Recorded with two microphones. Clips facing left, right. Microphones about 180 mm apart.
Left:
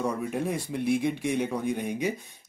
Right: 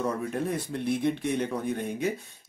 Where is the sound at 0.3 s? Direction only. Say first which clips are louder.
Even; 10° left (ahead or behind).